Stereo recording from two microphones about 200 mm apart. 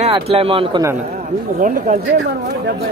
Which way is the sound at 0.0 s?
30° right (ahead or behind).